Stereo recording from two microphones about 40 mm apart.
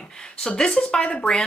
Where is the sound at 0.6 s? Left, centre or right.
Centre.